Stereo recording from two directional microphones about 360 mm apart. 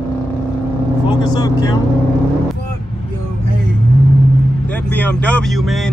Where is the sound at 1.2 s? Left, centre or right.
Centre.